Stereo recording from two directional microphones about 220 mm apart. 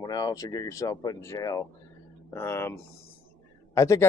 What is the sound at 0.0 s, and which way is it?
Speech, 20° left (ahead or behind).